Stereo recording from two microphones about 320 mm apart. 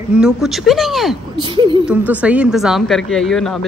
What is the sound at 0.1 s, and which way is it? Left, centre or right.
Speech, centre.